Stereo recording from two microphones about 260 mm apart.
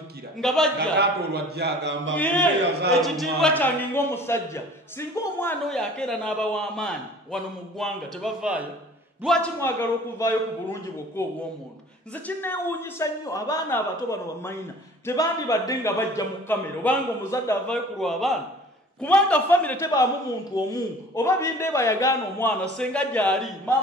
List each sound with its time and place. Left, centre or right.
0.4 s a man's voice: centre
0.7 s speech: right
2.1 s a man's voice: centre
15.0 s a man's voice: centre